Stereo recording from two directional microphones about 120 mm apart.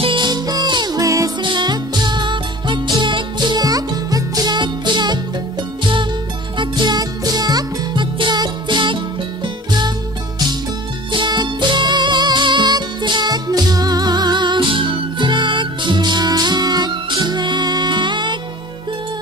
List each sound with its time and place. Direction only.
0.0 s music: 40° right (ahead or behind)
1.4 s music: 40° right (ahead or behind)
6.6 s music: 35° right (ahead or behind)
11.1 s music: 40° right (ahead or behind)